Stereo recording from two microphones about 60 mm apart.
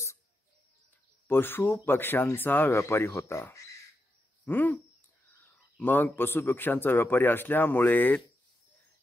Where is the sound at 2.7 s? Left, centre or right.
Left.